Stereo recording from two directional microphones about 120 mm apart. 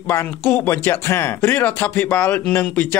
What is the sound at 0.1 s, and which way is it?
Speech, 20° left (ahead or behind).